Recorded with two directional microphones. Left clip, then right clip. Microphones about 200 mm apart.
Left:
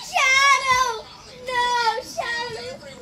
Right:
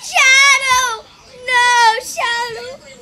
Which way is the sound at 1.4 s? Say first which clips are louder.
Right 9 dB; 10° right (ahead or behind).